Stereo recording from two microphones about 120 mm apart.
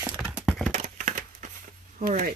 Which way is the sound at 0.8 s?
90° right.